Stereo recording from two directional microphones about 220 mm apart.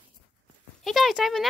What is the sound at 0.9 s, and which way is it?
Speech, centre (ahead or behind).